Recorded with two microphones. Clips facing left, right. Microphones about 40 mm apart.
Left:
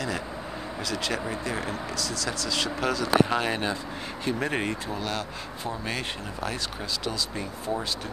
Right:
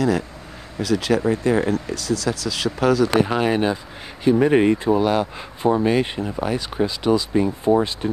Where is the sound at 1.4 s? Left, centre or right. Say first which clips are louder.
Right 13 dB; right.